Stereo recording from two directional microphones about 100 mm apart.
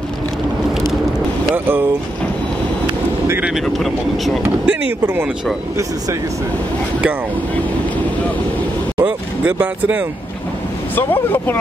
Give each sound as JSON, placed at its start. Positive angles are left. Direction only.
{"t": 1.5, "sound": "speech", "side_deg": -20}
{"t": 3.7, "sound": "speech", "side_deg": 0}
{"t": 4.6, "sound": "speech", "side_deg": -15}
{"t": 9.0, "sound": "speech", "side_deg": -10}
{"t": 11.0, "sound": "speech", "side_deg": 20}